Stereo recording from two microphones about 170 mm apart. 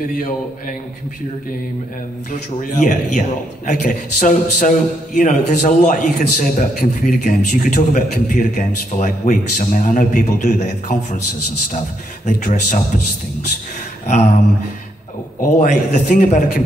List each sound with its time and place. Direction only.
2.3 s a man's voice: 50° left (ahead or behind)
12.3 s a man's voice: 50° left (ahead or behind)
15.4 s a man's voice: 50° left (ahead or behind)